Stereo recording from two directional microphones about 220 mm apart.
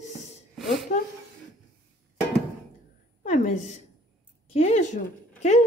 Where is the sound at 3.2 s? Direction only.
35° left (ahead or behind).